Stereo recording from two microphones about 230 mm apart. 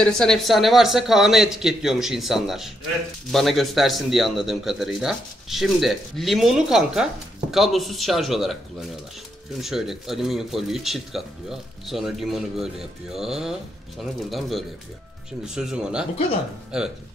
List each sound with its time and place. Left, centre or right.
0.0 s speech: centre